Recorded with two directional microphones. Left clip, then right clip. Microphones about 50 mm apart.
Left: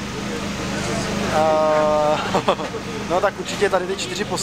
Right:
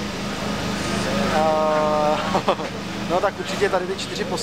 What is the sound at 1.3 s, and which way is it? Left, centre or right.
Speech, centre.